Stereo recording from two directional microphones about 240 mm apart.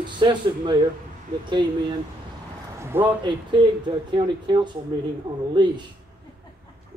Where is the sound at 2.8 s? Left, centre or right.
Centre.